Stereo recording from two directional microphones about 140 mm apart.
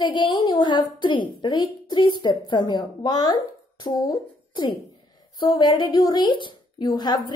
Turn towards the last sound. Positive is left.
turn(degrees=30)  # may be behind; listen again after turning